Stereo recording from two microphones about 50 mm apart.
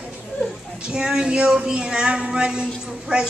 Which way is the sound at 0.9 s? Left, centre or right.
Centre.